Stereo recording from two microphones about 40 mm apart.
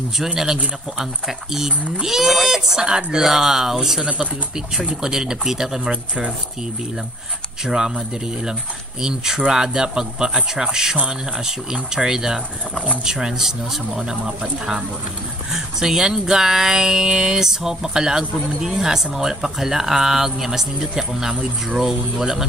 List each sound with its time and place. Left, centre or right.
0.4 s speech: centre
3.3 s speech: centre
7.6 s speech: centre
9.0 s speech: centre